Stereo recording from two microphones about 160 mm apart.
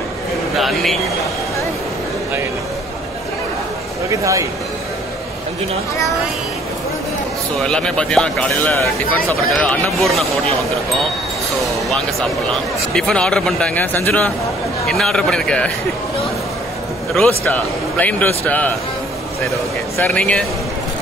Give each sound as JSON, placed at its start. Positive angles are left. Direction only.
{"t": 0.6, "sound": "speech", "side_deg": 0}
{"t": 4.1, "sound": "speech", "side_deg": -20}
{"t": 7.5, "sound": "speech", "side_deg": 5}
{"t": 11.9, "sound": "speech", "side_deg": 0}
{"t": 17.1, "sound": "a man's voice", "side_deg": 5}
{"t": 20.0, "sound": "a man's voice", "side_deg": 10}